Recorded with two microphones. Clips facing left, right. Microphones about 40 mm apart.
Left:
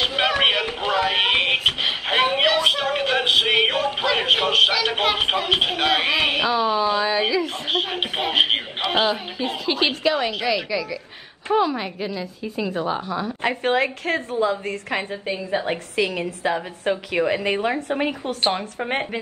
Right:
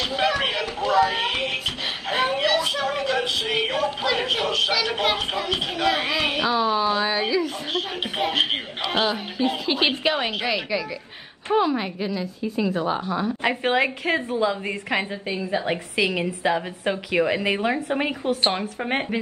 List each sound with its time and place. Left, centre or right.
0.0 s a sound: left
6.6 s a woman's voice: centre
7.4 s speech: left
8.9 s a woman's voice: centre
10.0 s a woman's voice: centre
15.6 s a woman's voice: centre